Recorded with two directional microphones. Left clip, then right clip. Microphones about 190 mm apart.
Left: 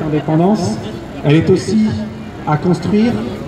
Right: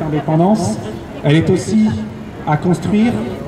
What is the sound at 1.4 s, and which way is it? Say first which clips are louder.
Speech: left 2 dB; 55° right (ahead or behind).